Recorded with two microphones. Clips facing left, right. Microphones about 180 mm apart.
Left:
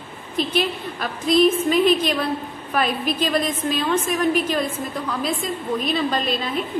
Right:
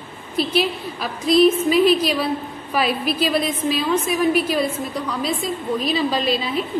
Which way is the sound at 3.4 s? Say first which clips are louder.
Right 1 dB; 45° left (ahead or behind).